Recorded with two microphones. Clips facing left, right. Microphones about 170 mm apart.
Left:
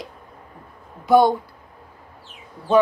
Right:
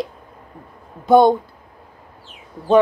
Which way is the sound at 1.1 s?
20° right (ahead or behind).